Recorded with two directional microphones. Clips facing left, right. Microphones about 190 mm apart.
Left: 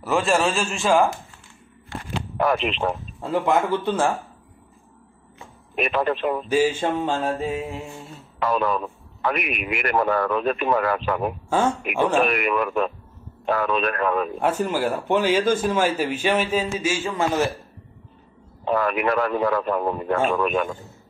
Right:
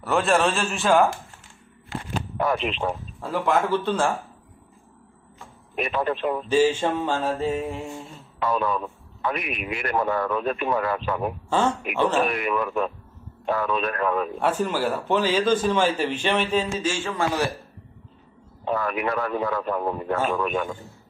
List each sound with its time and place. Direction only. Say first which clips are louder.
0.0 s a man's voice: even; centre (ahead or behind)
2.3 s a man's voice: left 3 dB; 80° left
3.3 s speech: left 1 dB; 15° left (ahead or behind)
5.8 s a man's voice: left 2 dB; 80° left
6.5 s speech: right 1 dB; 10° left (ahead or behind)
8.4 s a man's voice: left 2 dB; 85° left
11.4 s speech: left 1 dB; 10° left (ahead or behind)
12.3 s speech: left 3 dB; 75° left (ahead or behind)
14.6 s speech: left 1 dB; 10° left (ahead or behind)
18.7 s a man's voice: left 4 dB; 80° left